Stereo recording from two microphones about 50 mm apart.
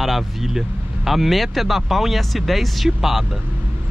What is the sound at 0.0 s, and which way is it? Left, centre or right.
Speech, centre.